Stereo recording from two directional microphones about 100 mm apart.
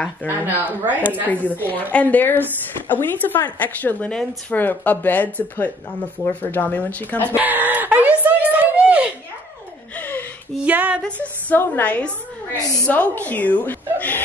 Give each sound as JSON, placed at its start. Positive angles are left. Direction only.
{"t": 0.5, "sound": "speech", "side_deg": -20}
{"t": 1.3, "sound": "speech", "side_deg": 15}
{"t": 7.2, "sound": "a sound", "side_deg": -20}
{"t": 9.9, "sound": "gasp", "side_deg": 20}
{"t": 10.5, "sound": "a sound", "side_deg": -15}
{"t": 11.0, "sound": "a woman's voice", "side_deg": 15}